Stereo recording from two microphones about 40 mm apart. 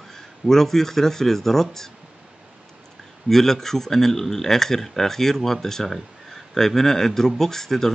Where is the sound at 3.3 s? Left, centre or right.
Centre.